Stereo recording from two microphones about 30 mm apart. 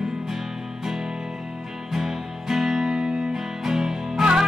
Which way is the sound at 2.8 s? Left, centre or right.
Right.